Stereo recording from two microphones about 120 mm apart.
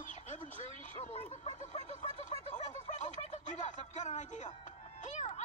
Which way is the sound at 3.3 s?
80° left.